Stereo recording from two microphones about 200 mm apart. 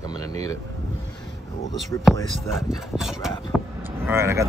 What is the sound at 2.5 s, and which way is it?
Speech, centre (ahead or behind).